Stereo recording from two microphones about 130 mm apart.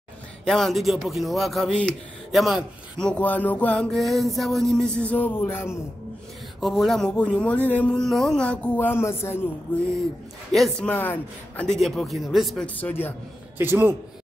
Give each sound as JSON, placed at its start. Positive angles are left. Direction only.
{"t": 0.5, "sound": "a man's voice", "side_deg": 0}
{"t": 5.0, "sound": "speech", "side_deg": 15}
{"t": 6.6, "sound": "speech", "side_deg": 0}
{"t": 10.5, "sound": "a man's voice", "side_deg": 0}
{"t": 10.9, "sound": "a man's voice", "side_deg": 15}
{"t": 12.6, "sound": "speech", "side_deg": 15}
{"t": 13.6, "sound": "a man's voice", "side_deg": -15}